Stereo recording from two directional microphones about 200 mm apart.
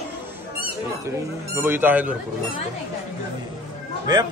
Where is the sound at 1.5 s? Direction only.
10° right (ahead or behind).